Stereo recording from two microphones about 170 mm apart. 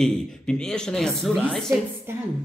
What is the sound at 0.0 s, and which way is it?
Speech, 5° left (ahead or behind).